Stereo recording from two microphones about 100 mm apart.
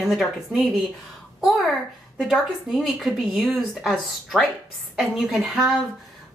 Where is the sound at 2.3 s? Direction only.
Centre (ahead or behind).